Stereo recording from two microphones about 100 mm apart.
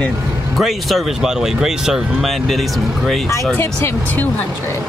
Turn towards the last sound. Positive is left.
turn(degrees=25)  # may be behind; listen again after turning